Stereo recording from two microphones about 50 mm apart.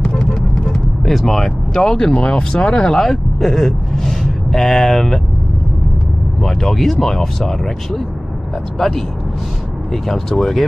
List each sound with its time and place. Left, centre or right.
0.0 s vehicle: centre
0.7 s speech: centre
6.4 s speech: centre
10.0 s speech: centre